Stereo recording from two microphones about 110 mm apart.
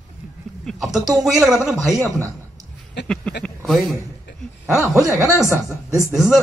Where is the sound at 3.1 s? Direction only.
5° left (ahead or behind).